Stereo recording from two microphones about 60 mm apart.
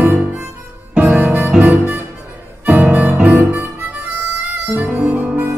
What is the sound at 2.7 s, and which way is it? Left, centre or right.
Music, right.